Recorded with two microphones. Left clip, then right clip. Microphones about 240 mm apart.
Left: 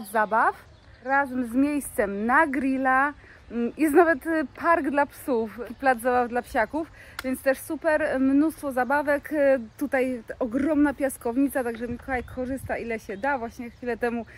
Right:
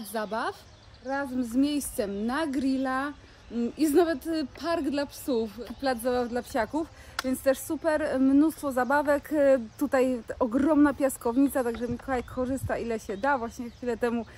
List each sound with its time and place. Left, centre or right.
0.1 s speech: left
6.3 s speech: centre